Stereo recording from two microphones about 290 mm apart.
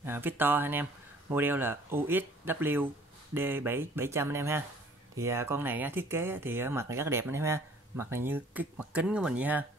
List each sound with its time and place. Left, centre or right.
0.0 s speech: centre